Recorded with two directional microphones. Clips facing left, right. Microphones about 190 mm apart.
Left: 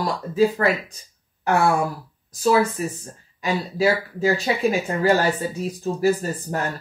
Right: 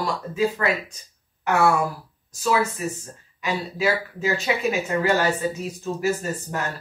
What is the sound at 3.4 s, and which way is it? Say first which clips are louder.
Speech: left 3 dB; 35° left (ahead or behind).